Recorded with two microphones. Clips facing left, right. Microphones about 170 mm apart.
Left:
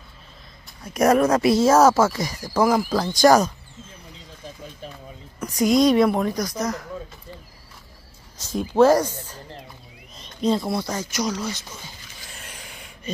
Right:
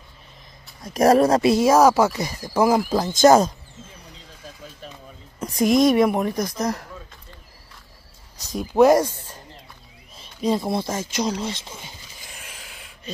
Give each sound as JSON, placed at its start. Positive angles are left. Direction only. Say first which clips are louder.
{"t": 0.9, "sound": "speech", "louder": "right 2 dB", "side_deg": -35}
{"t": 1.6, "sound": "a woman's voice", "louder": "left 1 dB", "side_deg": -15}
{"t": 5.4, "sound": "a woman's voice", "louder": "even", "side_deg": -20}
{"t": 8.5, "sound": "speech", "louder": "right 1 dB", "side_deg": -15}
{"t": 10.1, "sound": "a sound", "louder": "left 1 dB", "side_deg": -10}
{"t": 10.7, "sound": "a woman's voice", "louder": "right 1 dB", "side_deg": -25}
{"t": 12.4, "sound": "a sound", "louder": "left 3 dB", "side_deg": -5}